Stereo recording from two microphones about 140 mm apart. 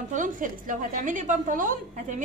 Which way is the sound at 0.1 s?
70° right (ahead or behind).